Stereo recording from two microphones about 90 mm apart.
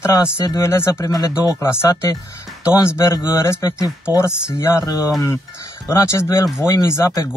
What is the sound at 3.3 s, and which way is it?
Speech, 35° left (ahead or behind).